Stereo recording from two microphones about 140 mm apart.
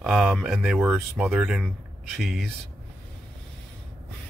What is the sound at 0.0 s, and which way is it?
Speech, centre (ahead or behind).